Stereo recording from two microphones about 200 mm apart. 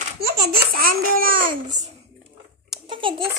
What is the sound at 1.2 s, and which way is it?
Speech, 45° right (ahead or behind).